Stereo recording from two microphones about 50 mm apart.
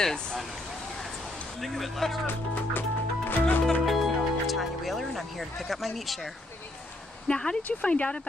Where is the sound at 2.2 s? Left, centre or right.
Left.